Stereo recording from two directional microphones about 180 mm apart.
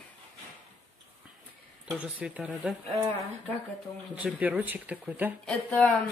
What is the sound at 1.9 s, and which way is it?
Speech, 5° right (ahead or behind).